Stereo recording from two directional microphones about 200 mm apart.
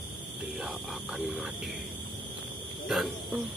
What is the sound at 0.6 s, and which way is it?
Speech, 5° right (ahead or behind).